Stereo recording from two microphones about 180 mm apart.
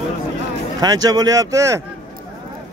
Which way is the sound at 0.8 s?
20° right (ahead or behind).